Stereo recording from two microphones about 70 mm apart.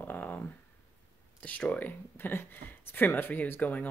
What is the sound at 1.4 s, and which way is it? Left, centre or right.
Speech, left.